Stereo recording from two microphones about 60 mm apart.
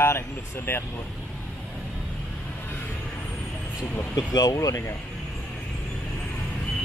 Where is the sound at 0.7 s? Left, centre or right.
Left.